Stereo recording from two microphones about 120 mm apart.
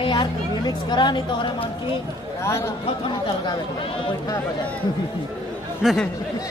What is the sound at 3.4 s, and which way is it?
Speech, 50° left (ahead or behind).